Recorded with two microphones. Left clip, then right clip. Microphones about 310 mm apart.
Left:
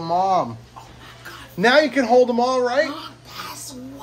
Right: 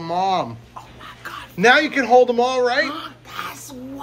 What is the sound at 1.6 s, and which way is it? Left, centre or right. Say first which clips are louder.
Speech: right 1 dB; centre.